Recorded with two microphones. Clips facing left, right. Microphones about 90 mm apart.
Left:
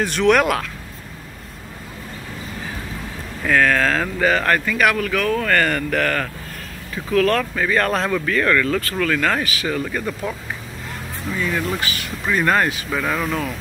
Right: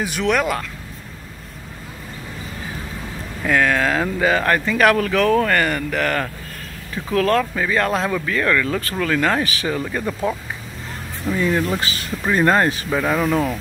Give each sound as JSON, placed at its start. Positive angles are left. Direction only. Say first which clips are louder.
{"t": 0.0, "sound": "speech", "louder": "left 4 dB", "side_deg": -5}
{"t": 3.4, "sound": "speech", "louder": "left 1 dB", "side_deg": -15}
{"t": 4.7, "sound": "speech", "louder": "right 3 dB", "side_deg": -35}
{"t": 5.7, "sound": "speech", "louder": "left 1 dB", "side_deg": -5}
{"t": 7.2, "sound": "speech", "louder": "even", "side_deg": -25}
{"t": 11.3, "sound": "speech", "louder": "right 3 dB", "side_deg": -30}
{"t": 13.3, "sound": "speech", "louder": "right 5 dB", "side_deg": -35}